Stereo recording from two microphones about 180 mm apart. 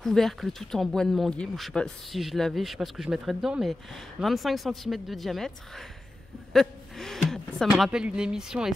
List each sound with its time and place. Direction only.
0.0 s speech: centre (ahead or behind)